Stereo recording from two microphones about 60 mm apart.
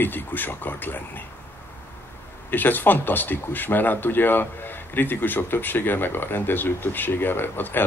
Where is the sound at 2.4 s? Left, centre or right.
Left.